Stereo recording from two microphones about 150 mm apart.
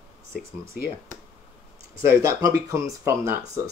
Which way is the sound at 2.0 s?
20° right (ahead or behind).